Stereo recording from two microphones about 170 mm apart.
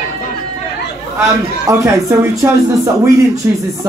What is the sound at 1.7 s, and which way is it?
Speech, 20° right (ahead or behind).